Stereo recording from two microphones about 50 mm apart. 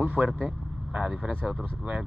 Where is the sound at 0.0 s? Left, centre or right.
Right.